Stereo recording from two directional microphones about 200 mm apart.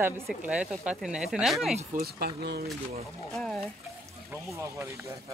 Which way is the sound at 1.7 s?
50° right (ahead or behind).